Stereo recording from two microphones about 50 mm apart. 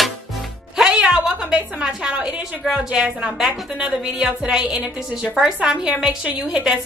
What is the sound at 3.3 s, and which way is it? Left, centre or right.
A woman's voice, centre.